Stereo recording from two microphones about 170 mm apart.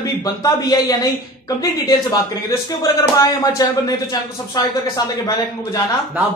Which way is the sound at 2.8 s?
20° left (ahead or behind).